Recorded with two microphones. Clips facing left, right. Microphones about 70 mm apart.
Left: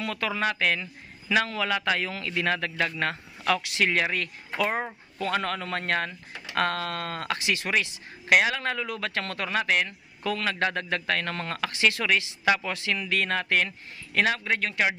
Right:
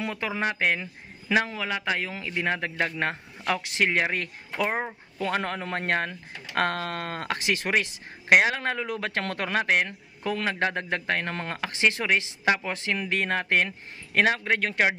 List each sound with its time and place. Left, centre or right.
0.0 s a man's voice: right